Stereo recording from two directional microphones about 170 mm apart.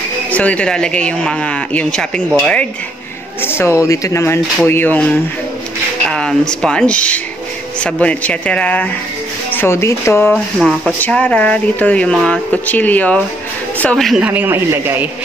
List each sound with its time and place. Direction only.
0.3 s a woman's voice: 10° left (ahead or behind); by 15.0 s 15° right (ahead or behind)